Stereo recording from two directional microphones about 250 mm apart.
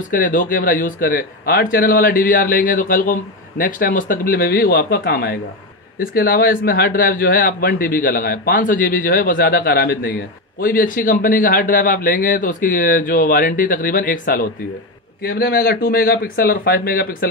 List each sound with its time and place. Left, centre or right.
0.1 s speech: left